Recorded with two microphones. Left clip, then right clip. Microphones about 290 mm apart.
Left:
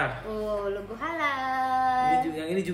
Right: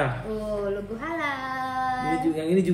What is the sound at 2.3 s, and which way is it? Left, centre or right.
Speech, centre.